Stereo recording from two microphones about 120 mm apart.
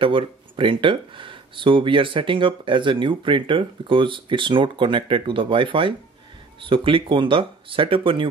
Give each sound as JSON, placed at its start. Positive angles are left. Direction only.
{"t": 0.0, "sound": "speech", "side_deg": -45}